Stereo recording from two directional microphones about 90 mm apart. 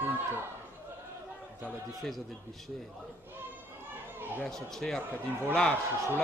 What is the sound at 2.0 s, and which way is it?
Speech, centre (ahead or behind).